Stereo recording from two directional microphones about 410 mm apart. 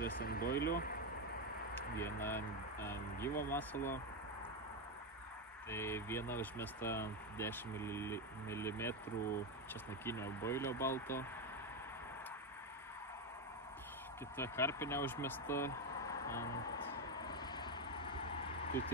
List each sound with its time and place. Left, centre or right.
0.0 s speech: left
2.0 s speech: centre
3.3 s speech: centre
3.5 s speech: centre
5.7 s speech: centre
10.0 s speech: centre
14.3 s speech: centre
17.1 s vehicle: centre